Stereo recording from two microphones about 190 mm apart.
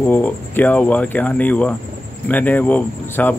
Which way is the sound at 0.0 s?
10° left (ahead or behind).